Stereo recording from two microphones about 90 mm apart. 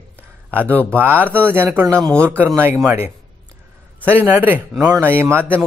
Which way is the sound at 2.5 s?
25° right (ahead or behind).